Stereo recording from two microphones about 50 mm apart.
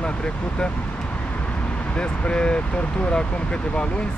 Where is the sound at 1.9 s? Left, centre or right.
Centre.